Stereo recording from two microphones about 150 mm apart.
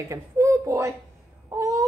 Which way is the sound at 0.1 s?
20° right (ahead or behind).